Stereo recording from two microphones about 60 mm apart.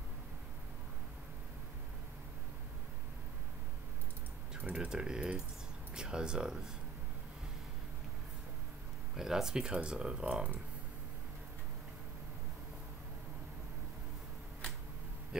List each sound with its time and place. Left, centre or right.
4.6 s speech: centre
9.1 s speech: centre